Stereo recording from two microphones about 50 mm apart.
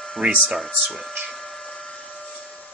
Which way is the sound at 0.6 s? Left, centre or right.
Centre.